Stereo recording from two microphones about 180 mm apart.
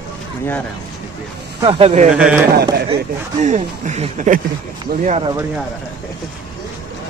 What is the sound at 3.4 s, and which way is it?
Speech, 40° right (ahead or behind).